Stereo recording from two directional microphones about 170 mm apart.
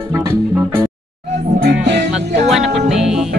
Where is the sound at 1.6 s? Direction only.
65° right (ahead or behind).